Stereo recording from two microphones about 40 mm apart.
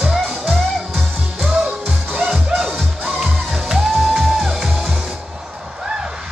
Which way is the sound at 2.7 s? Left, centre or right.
Right.